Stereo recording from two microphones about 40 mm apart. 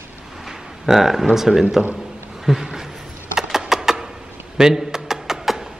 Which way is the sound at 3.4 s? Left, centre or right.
Centre.